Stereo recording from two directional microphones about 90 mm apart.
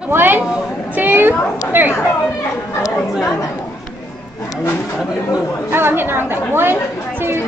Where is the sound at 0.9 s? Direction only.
25° right (ahead or behind).